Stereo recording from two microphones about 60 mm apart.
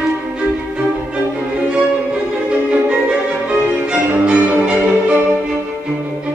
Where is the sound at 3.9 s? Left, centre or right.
Right.